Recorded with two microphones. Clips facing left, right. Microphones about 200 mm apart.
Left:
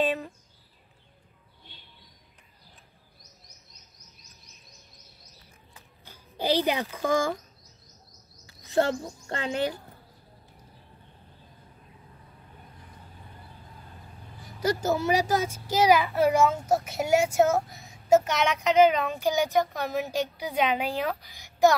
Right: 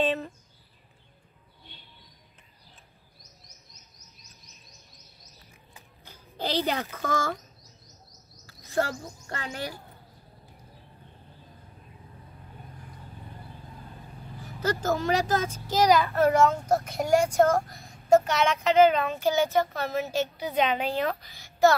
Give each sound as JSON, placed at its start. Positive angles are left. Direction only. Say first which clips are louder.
{"t": 6.3, "sound": "speech", "louder": "left 3 dB", "side_deg": 10}
{"t": 8.5, "sound": "a child's voice", "louder": "left 4 dB", "side_deg": 20}
{"t": 14.6, "sound": "speech", "louder": "left 1 dB", "side_deg": 10}
{"t": 19.2, "sound": "speech", "louder": "even", "side_deg": 15}